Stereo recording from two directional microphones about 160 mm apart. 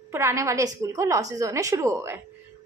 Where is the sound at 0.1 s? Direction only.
20° right (ahead or behind).